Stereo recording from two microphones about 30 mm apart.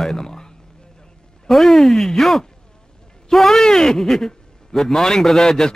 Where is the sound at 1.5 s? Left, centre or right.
Centre.